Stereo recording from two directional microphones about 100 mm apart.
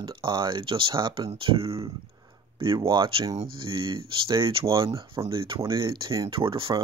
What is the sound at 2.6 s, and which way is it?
Speech, 60° right (ahead or behind).